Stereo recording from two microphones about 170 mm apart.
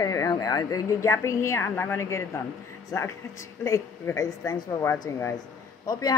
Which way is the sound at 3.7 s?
20° left (ahead or behind).